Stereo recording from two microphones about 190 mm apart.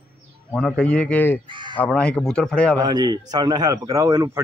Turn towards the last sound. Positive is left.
turn(degrees=-15)  # may be behind; listen again after turning